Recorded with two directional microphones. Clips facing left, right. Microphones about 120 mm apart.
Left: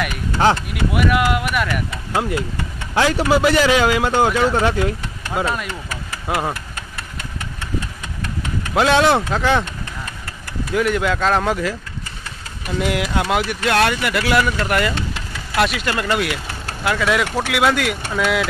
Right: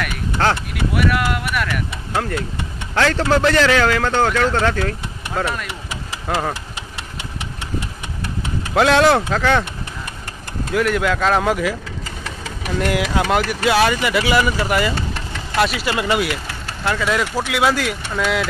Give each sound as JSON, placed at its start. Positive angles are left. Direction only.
{"t": 0.4, "sound": "speech", "side_deg": 15}
{"t": 2.1, "sound": "speech", "side_deg": 20}
{"t": 8.7, "sound": "speech", "side_deg": 0}
{"t": 10.7, "sound": "speech", "side_deg": 0}
{"t": 12.7, "sound": "speech", "side_deg": 5}